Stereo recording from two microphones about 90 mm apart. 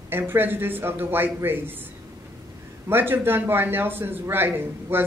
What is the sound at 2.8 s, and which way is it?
A man's voice, 25° right (ahead or behind).